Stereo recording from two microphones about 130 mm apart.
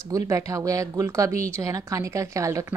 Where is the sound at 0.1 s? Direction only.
25° right (ahead or behind).